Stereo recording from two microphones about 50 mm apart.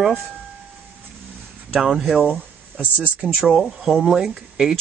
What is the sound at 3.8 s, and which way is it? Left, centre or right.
Speech, centre.